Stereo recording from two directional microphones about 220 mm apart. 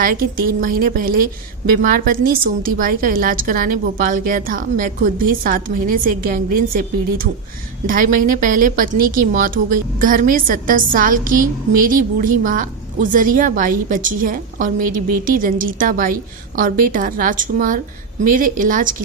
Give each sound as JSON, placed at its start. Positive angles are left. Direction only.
{"t": 0.6, "sound": "a woman's voice", "side_deg": -40}
{"t": 7.8, "sound": "a woman's voice", "side_deg": -40}